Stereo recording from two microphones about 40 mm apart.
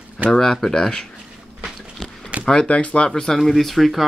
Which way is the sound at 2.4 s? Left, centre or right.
Centre.